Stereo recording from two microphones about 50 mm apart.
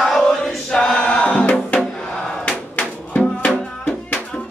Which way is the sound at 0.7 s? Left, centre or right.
Centre.